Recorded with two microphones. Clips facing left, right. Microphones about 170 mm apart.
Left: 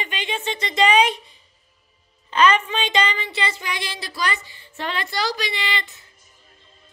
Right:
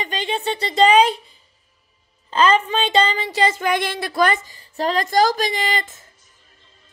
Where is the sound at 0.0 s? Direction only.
35° right (ahead or behind).